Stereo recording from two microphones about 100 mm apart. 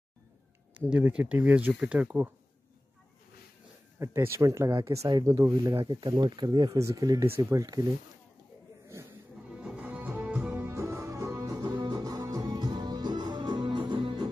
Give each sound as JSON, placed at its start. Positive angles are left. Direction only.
{"t": 0.7, "sound": "speech", "side_deg": -15}
{"t": 4.0, "sound": "speech", "side_deg": -25}
{"t": 6.8, "sound": "speech", "side_deg": -35}
{"t": 7.2, "sound": "speech", "side_deg": -25}
{"t": 9.5, "sound": "music", "side_deg": -10}
{"t": 10.6, "sound": "music", "side_deg": -30}